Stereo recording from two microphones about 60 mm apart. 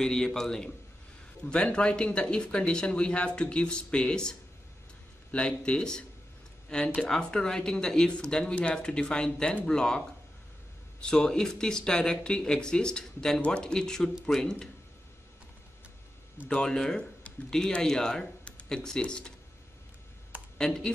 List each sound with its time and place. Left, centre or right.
0.0 s speech: centre
16.4 s speech: centre
20.5 s speech: centre